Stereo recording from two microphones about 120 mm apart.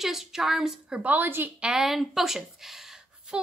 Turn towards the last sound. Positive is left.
turn(degrees=-5)  # may be behind; listen again after turning